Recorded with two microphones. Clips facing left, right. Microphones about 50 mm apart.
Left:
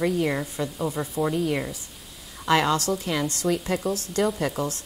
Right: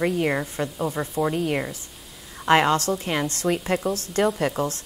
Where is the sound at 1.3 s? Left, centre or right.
Right.